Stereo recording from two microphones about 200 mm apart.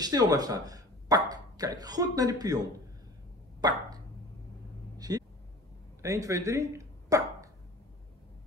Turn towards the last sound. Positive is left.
turn(degrees=-15)  # may be behind; listen again after turning